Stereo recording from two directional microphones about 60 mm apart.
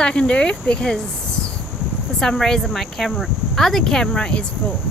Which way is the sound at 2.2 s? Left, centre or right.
Centre.